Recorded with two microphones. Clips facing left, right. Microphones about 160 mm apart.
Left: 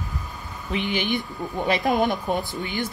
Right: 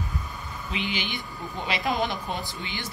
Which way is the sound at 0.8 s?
50° left (ahead or behind).